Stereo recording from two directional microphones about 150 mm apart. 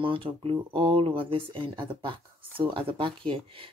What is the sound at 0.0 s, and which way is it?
Speech, 35° right (ahead or behind).